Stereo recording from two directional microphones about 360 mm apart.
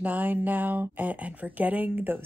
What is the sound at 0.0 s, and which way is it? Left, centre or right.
Speech, centre.